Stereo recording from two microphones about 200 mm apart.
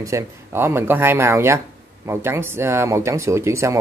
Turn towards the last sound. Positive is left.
turn(degrees=-15)  # may be behind; listen again after turning